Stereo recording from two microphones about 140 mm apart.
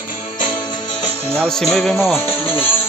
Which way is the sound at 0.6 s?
30° left (ahead or behind).